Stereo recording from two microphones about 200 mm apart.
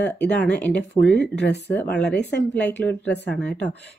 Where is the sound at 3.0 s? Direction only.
60° left (ahead or behind).